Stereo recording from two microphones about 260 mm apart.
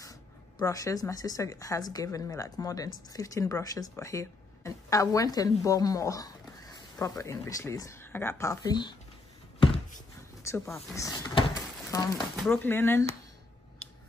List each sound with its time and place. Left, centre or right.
0.0 s speech: centre
10.4 s speech: centre
11.0 s a sound: centre
12.4 s speech: centre